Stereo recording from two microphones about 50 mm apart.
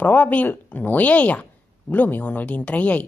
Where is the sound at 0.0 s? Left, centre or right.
Left.